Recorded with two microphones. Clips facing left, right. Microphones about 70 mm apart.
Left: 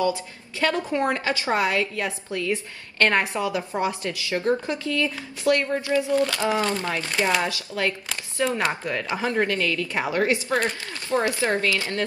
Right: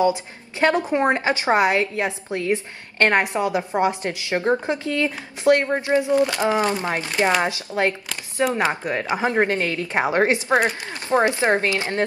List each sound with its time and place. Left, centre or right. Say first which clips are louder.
0.0 s a woman's voice: right 4 dB; right